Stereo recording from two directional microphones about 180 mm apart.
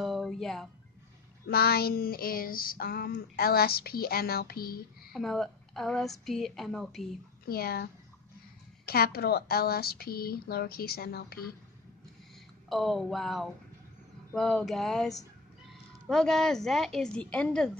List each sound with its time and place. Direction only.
0.0 s music: centre (ahead or behind)
1.4 s female singing: 60° left (ahead or behind)
5.1 s a woman's voice: centre (ahead or behind)
7.4 s female singing: 60° left (ahead or behind)
12.6 s a woman's voice: centre (ahead or behind)